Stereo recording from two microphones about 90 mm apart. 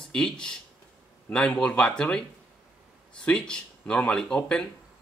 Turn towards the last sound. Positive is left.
turn(degrees=10)  # may be behind; listen again after turning